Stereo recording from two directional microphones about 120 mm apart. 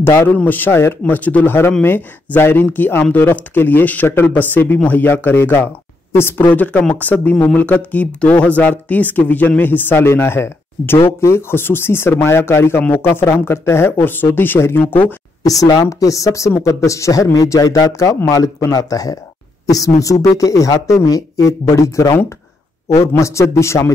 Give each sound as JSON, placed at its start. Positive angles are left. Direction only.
{"t": 0.0, "sound": "speech", "side_deg": 20}
{"t": 15.4, "sound": "speech", "side_deg": 30}